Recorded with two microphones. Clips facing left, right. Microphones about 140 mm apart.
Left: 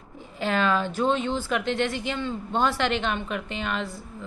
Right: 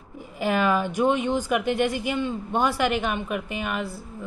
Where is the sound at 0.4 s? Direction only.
10° right (ahead or behind).